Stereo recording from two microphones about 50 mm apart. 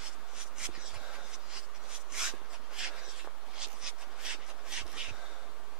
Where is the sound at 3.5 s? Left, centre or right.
Centre.